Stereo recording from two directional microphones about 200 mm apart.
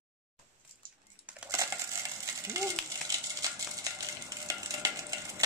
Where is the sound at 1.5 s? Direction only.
15° right (ahead or behind).